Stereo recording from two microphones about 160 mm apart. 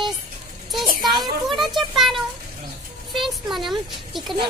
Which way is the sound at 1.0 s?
25° right (ahead or behind).